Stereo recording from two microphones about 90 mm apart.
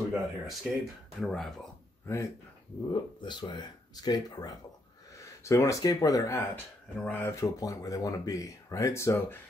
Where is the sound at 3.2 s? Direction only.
55° left (ahead or behind).